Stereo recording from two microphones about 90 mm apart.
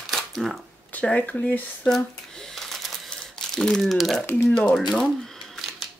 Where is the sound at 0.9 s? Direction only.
15° left (ahead or behind).